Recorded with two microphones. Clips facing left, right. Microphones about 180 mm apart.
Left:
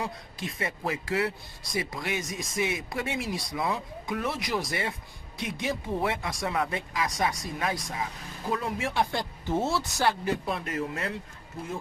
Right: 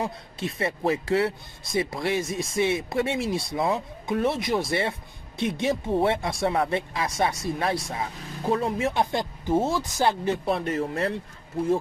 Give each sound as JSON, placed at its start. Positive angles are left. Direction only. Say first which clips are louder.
{"t": 0.0, "sound": "speech", "louder": "right 5 dB", "side_deg": -30}